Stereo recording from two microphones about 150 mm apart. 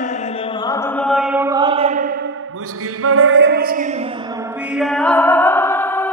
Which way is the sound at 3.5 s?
75° right (ahead or behind).